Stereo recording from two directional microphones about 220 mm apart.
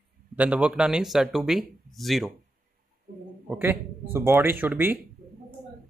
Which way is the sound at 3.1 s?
40° right (ahead or behind).